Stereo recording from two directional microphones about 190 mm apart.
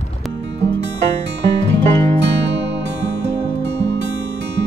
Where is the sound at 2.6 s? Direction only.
65° right (ahead or behind).